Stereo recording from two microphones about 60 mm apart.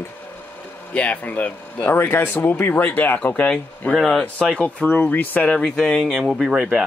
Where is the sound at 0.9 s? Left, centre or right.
Left.